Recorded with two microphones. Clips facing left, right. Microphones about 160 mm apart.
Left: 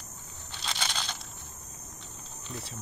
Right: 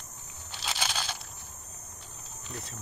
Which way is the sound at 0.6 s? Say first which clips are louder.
Right 1 dB; 5° right (ahead or behind).